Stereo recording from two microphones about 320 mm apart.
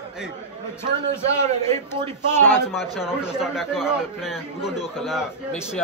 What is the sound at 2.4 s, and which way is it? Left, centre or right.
Speech, centre.